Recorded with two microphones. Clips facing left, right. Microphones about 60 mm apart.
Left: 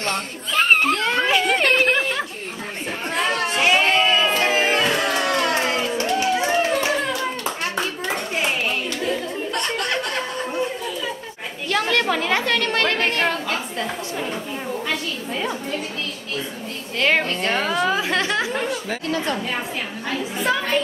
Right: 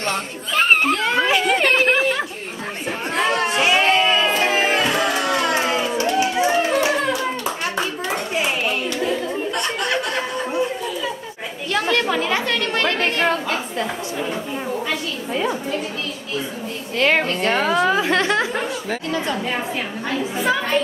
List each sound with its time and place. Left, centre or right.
0.0 s a sound: centre
4.5 s music: centre
4.7 s music: centre
5.3 s a sound: centre
5.9 s run: centre
6.3 s hands: centre
9.5 s chuckle: centre
12.5 s chatter: centre
17.0 s a woman's voice: centre
17.8 s speech: right
18.5 s a woman's voice: centre
20.2 s a woman's voice: centre